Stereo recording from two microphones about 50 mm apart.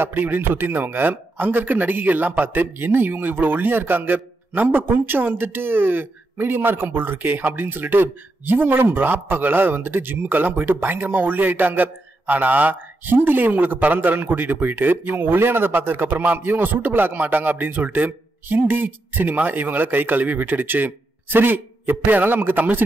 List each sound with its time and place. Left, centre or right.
0.0 s speech: right